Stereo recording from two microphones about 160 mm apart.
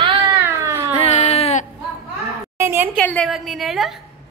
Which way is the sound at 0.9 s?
45° left (ahead or behind).